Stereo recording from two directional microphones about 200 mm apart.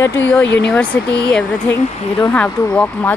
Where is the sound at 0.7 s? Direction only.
5° left (ahead or behind).